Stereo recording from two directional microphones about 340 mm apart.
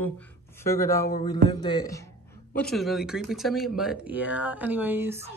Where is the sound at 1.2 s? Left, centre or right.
Centre.